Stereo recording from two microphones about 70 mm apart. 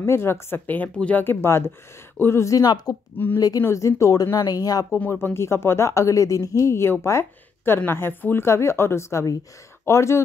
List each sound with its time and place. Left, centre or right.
0.0 s speech: left
0.9 s speech: centre
1.2 s speech: left
2.4 s speech: left
2.7 s speech: left
3.6 s speech: left
5.1 s speech: left
6.6 s speech: left
8.5 s speech: left